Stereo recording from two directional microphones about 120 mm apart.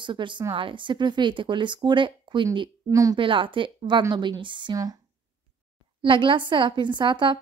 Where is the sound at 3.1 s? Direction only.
45° right (ahead or behind).